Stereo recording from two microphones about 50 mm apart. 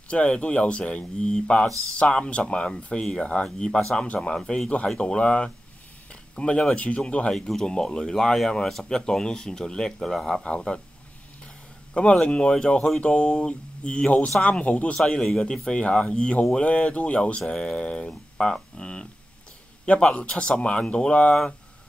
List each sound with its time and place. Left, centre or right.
0.1 s speech: left
7.3 s speech: centre
10.4 s speech: centre
11.9 s speech: centre
15.4 s speech: centre